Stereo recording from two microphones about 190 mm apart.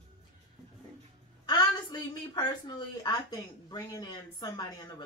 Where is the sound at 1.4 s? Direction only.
20° left (ahead or behind).